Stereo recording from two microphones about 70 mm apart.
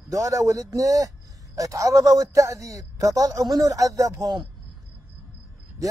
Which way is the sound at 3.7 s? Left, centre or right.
Right.